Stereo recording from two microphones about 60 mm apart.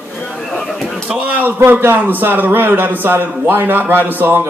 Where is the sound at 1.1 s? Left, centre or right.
Right.